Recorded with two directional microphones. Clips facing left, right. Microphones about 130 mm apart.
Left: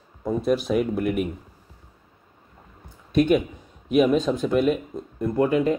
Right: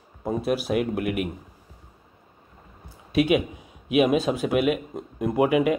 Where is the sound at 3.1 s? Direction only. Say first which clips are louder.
Left 2 dB; 75° right (ahead or behind).